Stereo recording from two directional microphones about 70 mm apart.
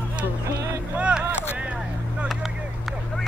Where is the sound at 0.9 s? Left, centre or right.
Centre.